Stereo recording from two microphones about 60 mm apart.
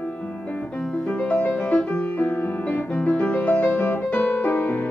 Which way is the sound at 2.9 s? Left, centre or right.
Left.